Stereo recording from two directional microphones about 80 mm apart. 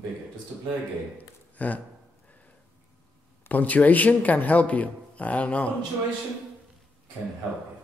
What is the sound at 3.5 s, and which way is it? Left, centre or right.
A man's voice, left.